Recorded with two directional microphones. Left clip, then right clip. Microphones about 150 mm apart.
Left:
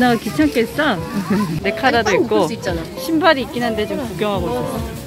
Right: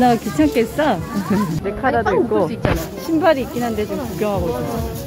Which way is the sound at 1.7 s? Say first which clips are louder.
Left 3 dB; 25° left (ahead or behind).